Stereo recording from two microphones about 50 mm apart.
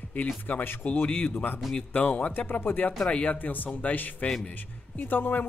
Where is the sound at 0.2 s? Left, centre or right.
Left.